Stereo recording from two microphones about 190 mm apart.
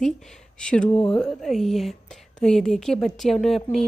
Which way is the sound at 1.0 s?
20° left (ahead or behind).